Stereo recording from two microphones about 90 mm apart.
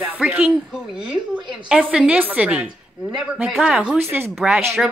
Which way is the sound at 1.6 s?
10° right (ahead or behind).